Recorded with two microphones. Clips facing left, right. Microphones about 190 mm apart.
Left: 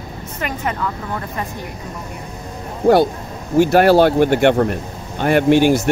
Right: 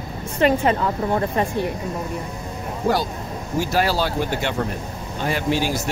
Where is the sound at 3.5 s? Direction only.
60° left (ahead or behind).